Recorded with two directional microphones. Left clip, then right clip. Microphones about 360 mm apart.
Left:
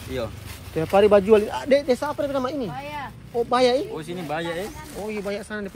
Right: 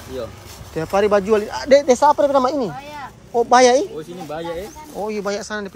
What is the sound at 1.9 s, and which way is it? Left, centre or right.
Speech, centre.